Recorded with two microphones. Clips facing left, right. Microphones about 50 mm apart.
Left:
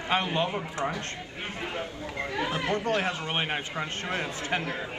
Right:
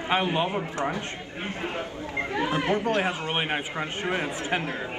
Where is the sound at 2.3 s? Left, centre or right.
Right.